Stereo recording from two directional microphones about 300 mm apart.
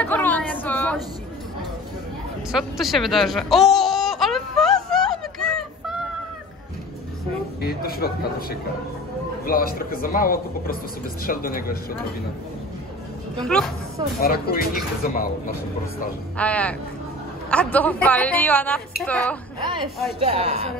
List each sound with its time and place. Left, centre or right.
0.0 s a sound: centre
2.5 s a sound: centre
7.6 s a man's voice: left
13.4 s a woman's voice: centre
14.2 s a man's voice: left
16.3 s a woman's voice: centre
19.6 s a woman's voice: centre